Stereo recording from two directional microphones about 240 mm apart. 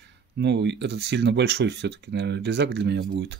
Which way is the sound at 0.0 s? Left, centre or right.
Right.